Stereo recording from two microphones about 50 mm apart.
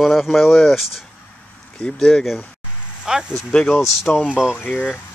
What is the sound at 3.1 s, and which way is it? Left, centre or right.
Speech, centre.